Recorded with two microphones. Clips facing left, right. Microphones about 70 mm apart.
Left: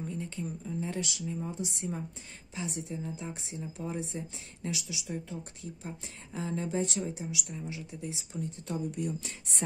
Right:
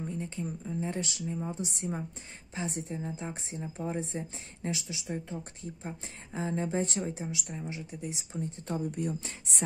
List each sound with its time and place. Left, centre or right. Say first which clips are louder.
0.2 s speech: right 1 dB; right